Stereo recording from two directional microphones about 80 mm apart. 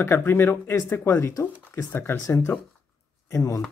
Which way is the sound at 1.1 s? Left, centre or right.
Left.